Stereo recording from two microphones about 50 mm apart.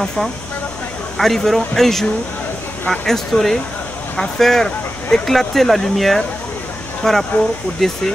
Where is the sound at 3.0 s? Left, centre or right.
Centre.